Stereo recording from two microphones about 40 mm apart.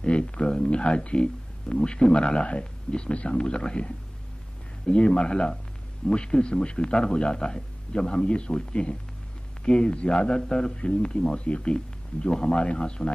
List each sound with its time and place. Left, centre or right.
0.0 s speech: left